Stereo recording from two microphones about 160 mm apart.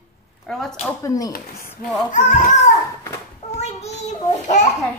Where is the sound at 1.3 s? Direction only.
60° left (ahead or behind).